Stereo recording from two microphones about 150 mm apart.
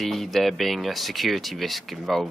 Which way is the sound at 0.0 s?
Centre (ahead or behind).